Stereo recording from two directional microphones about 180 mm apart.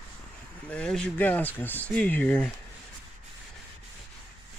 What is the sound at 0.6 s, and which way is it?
Speech, 5° left (ahead or behind).